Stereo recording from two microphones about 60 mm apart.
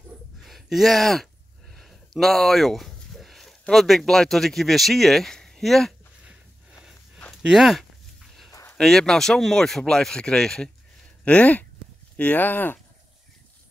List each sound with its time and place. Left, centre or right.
0.5 s speech: centre
7.4 s a sound: centre
8.8 s speech: centre
11.2 s speech: left